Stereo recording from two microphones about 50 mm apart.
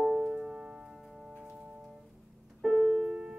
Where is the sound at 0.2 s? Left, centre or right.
Centre.